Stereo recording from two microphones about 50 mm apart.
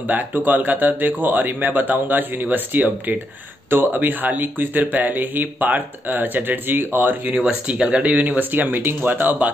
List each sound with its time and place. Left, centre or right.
0.0 s speech: right
7.6 s speech: centre
8.4 s speech: right